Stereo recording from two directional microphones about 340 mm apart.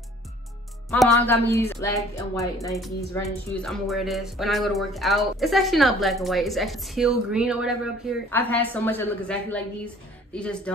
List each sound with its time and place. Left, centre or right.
0.8 s speech: centre